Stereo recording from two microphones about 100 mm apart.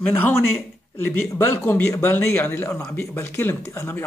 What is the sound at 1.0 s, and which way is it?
A man's voice, 20° left (ahead or behind).